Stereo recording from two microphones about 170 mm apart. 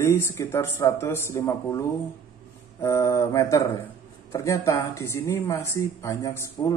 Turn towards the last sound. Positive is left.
turn(degrees=15)  # may be behind; listen again after turning